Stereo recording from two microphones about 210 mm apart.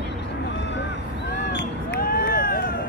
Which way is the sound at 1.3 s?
55° left (ahead or behind).